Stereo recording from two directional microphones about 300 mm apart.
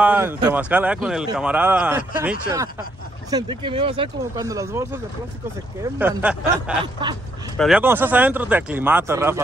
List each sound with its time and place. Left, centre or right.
0.0 s speech: centre
7.5 s speech: centre